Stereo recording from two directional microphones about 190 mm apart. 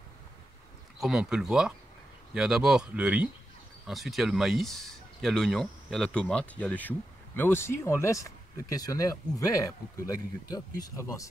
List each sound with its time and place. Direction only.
0.9 s speech: centre (ahead or behind); by 11.2 s 15° left (ahead or behind)